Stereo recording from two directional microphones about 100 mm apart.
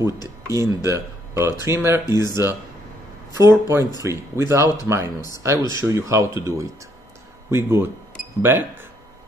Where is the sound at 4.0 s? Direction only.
30° right (ahead or behind).